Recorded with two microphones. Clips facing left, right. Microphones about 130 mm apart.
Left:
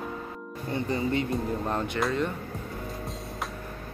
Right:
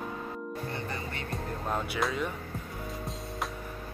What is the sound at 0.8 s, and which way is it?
Speech, 20° left (ahead or behind).